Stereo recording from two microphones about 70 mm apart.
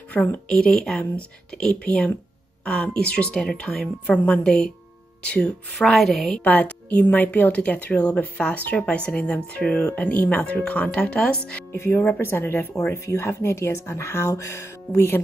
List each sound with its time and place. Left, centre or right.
0.2 s speech: centre
5.8 s speech: centre
6.4 s a woman's voice: left
12.2 s speech: left